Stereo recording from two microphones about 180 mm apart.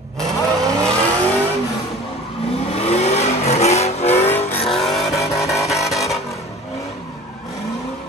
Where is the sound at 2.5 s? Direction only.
35° left (ahead or behind).